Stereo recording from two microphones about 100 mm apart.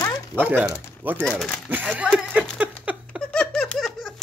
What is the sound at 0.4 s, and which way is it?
Speech, 20° right (ahead or behind).